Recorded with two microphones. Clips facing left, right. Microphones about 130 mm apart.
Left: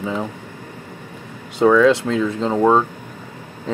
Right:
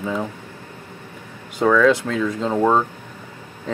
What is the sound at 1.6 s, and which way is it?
Speech, 15° left (ahead or behind).